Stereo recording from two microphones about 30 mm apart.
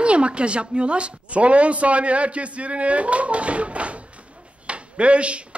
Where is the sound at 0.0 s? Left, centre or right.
Right.